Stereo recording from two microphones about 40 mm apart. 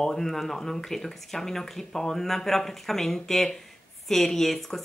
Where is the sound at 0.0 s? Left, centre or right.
Centre.